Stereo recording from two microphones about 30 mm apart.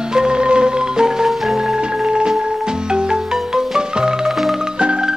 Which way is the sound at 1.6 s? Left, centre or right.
Right.